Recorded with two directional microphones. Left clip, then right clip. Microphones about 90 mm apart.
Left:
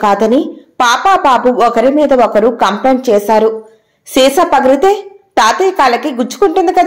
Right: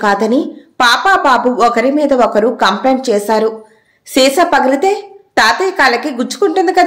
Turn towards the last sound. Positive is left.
turn(degrees=20)  # may be behind; listen again after turning